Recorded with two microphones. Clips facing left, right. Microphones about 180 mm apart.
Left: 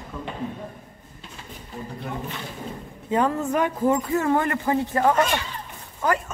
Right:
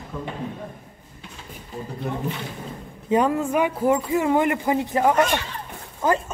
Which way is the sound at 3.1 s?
15° right (ahead or behind).